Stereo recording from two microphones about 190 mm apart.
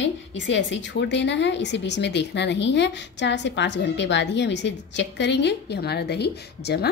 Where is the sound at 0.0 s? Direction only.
70° left (ahead or behind).